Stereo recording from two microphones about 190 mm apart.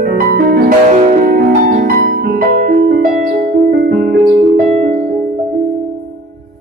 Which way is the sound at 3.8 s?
55° right (ahead or behind).